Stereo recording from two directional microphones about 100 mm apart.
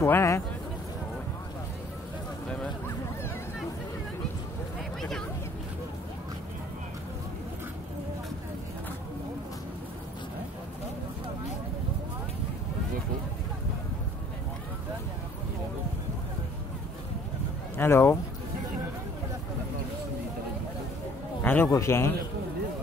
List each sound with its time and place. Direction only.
0.0 s a man's voice: 25° left (ahead or behind)
17.7 s speech: 25° left (ahead or behind)
21.4 s a sound: 15° left (ahead or behind)
21.6 s a man's voice: 25° left (ahead or behind)